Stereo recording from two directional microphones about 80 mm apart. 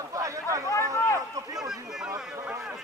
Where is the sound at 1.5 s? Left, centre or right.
Centre.